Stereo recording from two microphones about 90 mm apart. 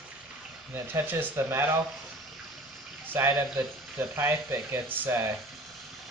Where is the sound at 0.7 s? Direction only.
25° right (ahead or behind).